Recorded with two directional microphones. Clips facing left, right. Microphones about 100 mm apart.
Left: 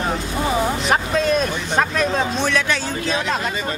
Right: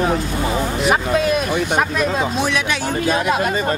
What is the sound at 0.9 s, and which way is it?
Speech, 10° right (ahead or behind).